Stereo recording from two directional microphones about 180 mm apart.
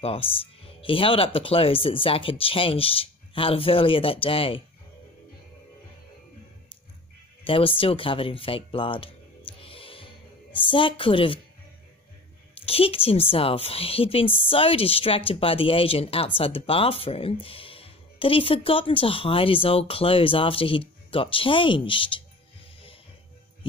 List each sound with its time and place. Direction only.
0.0 s a woman's voice: 30° left (ahead or behind)
7.4 s speech: 30° left (ahead or behind)
9.5 s music: 30° left (ahead or behind)
12.6 s a woman's voice: 30° left (ahead or behind)